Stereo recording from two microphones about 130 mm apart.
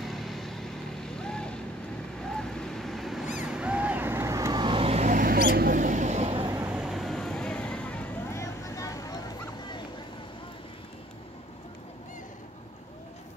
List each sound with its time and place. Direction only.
0.0 s vehicle: centre (ahead or behind)
2.2 s a sound: 5° left (ahead or behind)
3.4 s vehicle: 10° right (ahead or behind); by 5.0 s 45° right (ahead or behind)
5.0 s vehicle: 90° right; by 6.4 s 55° right (ahead or behind)
6.7 s vehicle: centre (ahead or behind)
8.3 s vehicle: 25° left (ahead or behind)